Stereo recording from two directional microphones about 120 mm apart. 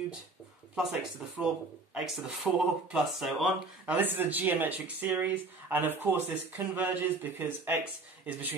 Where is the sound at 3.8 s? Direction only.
15° right (ahead or behind).